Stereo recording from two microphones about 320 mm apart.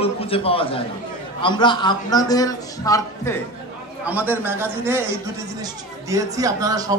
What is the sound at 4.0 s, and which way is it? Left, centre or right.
A man's voice, centre.